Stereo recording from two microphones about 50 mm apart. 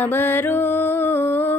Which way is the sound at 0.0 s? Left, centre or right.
Left.